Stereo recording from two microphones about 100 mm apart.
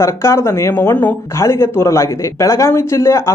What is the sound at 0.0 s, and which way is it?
Speech, 30° left (ahead or behind).